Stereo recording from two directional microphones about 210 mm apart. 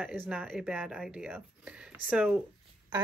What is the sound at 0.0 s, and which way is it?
Speech, 5° right (ahead or behind).